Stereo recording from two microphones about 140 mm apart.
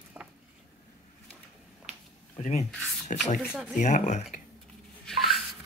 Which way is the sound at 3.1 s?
60° left (ahead or behind).